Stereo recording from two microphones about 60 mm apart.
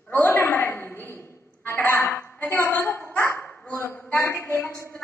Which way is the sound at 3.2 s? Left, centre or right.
Left.